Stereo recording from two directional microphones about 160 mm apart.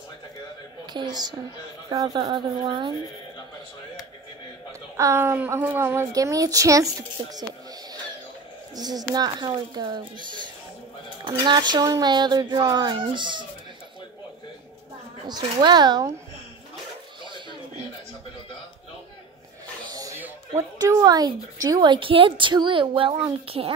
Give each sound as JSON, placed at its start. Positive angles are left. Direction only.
{"t": 0.9, "sound": "a woman's voice", "side_deg": -25}
{"t": 4.9, "sound": "a woman's voice", "side_deg": -15}
{"t": 8.7, "sound": "a woman's voice", "side_deg": -25}
{"t": 15.2, "sound": "a woman's voice", "side_deg": -25}
{"t": 19.9, "sound": "a woman's voice", "side_deg": -20}